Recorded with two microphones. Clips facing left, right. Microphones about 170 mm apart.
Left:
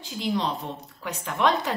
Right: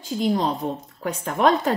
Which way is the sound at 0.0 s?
45° right (ahead or behind).